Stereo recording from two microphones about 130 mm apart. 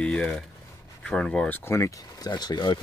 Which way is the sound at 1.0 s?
10° left (ahead or behind).